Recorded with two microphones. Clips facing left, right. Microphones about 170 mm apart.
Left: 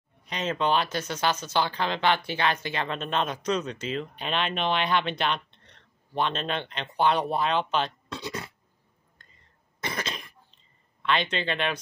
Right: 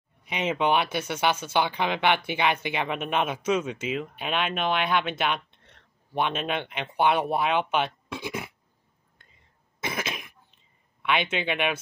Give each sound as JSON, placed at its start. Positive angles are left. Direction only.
{"t": 0.2, "sound": "speech", "side_deg": -10}
{"t": 9.8, "sound": "cough", "side_deg": -10}
{"t": 11.0, "sound": "speech", "side_deg": -10}